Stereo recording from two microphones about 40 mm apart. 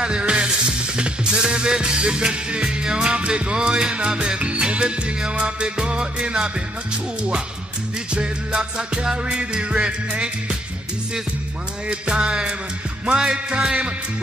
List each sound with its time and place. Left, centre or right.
0.0 s music: right
3.0 s music: right
8.1 s music: right
11.9 s music: right